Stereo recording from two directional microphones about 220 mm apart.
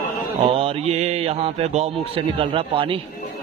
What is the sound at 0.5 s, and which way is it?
Speech, 25° right (ahead or behind).